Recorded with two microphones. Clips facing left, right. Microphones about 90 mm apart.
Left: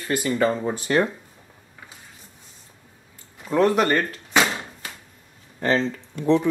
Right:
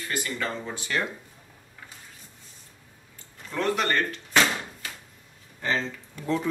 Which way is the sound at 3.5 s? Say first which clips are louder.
Left 8 dB; 40° left (ahead or behind).